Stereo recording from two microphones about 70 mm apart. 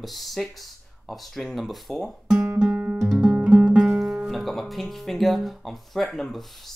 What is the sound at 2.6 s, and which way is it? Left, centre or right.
Music, centre.